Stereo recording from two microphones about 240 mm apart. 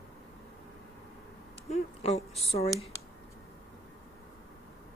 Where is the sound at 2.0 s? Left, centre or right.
Left.